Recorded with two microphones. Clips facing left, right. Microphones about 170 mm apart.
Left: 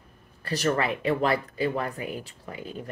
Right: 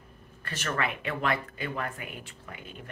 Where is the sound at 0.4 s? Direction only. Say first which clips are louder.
Left 7 dB; 35° left (ahead or behind).